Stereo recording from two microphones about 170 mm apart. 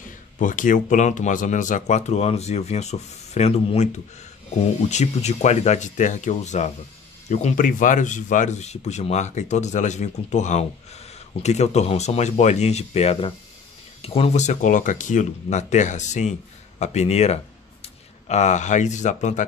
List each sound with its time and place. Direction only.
0.4 s speech: 50° left (ahead or behind)